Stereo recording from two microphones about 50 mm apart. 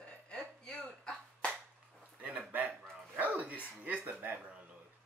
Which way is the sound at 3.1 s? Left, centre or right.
Right.